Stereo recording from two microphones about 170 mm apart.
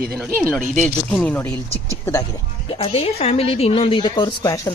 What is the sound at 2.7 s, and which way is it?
A woman's voice, 35° left (ahead or behind).